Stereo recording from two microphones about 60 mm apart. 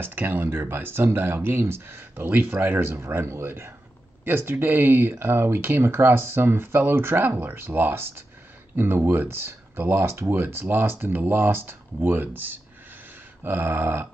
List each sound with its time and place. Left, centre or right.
0.0 s speech: right